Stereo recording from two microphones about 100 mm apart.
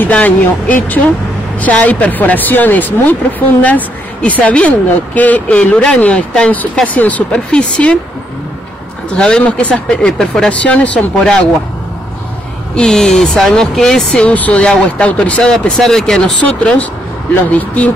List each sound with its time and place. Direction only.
0.0 s speech: 15° left (ahead or behind)
9.1 s speech: 10° left (ahead or behind)
12.7 s speech: 5° left (ahead or behind)
17.5 s speech: 15° left (ahead or behind)